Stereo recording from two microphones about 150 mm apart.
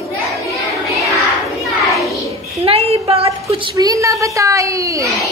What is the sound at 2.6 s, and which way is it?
Speech, 40° right (ahead or behind).